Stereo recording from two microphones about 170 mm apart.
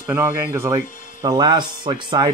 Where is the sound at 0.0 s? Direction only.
10° right (ahead or behind).